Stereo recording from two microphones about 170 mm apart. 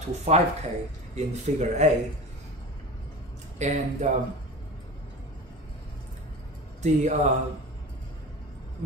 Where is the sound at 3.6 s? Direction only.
45° right (ahead or behind).